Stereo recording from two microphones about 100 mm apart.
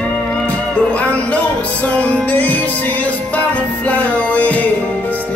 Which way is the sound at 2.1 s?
15° left (ahead or behind).